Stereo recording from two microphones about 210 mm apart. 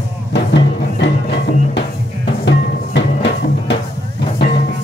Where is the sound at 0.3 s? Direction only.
55° left (ahead or behind).